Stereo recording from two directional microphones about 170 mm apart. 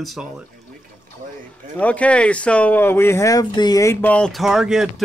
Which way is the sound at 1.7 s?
10° left (ahead or behind).